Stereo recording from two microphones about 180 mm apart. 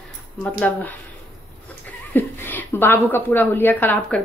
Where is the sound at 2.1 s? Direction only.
10° left (ahead or behind).